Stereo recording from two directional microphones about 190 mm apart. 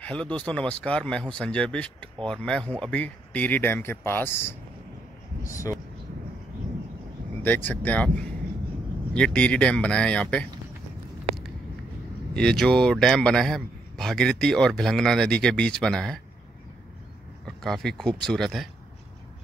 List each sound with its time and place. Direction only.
0.0 s a man's voice: 5° left (ahead or behind)
7.4 s speech: 10° left (ahead or behind)
9.1 s a man's voice: 5° left (ahead or behind)
12.4 s a man's voice: 5° left (ahead or behind)
17.6 s a man's voice: centre (ahead or behind)